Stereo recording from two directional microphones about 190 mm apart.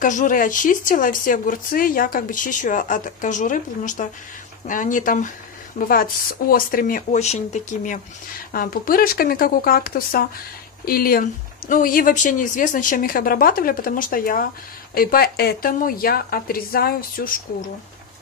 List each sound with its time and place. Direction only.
0.0 s a woman's voice: 45° left (ahead or behind)
6.5 s speech: 50° left (ahead or behind)